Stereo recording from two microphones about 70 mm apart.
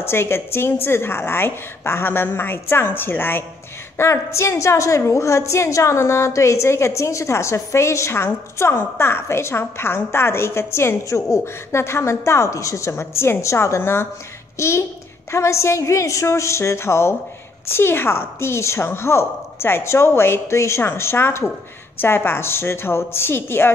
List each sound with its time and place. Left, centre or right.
0.0 s a woman's voice: left
4.0 s a woman's voice: left